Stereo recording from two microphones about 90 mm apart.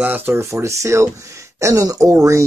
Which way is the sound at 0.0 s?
20° right (ahead or behind).